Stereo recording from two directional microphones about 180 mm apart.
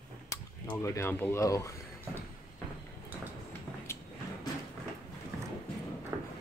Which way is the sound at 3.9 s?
15° left (ahead or behind).